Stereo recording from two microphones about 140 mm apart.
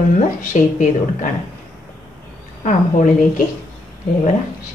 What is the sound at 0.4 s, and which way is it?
Speech, 65° left (ahead or behind).